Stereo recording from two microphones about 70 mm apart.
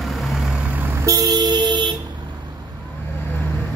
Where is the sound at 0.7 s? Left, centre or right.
Right.